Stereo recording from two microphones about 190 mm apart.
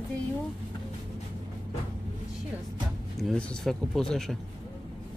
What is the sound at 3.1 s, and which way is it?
Speech, 5° left (ahead or behind).